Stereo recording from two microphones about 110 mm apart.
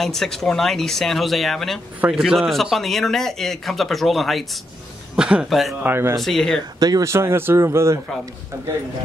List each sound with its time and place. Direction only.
0.0 s a man's voice: 5° left (ahead or behind)
2.0 s a man's voice: 10° right (ahead or behind)
5.8 s speech: 20° right (ahead or behind)
6.1 s a man's voice: centre (ahead or behind)
6.8 s speech: 35° right (ahead or behind)
7.1 s speech: 25° right (ahead or behind)